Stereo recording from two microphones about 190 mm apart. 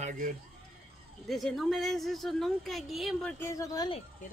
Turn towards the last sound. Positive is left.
turn(degrees=20)  # may be behind; listen again after turning